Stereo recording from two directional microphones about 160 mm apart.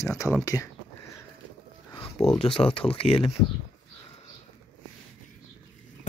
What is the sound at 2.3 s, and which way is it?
Speech, 35° left (ahead or behind).